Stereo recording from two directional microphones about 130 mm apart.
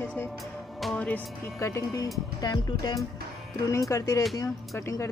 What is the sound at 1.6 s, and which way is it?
Speech, 25° left (ahead or behind).